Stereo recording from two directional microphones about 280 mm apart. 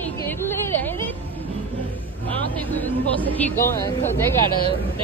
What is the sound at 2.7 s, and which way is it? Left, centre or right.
Speech, centre.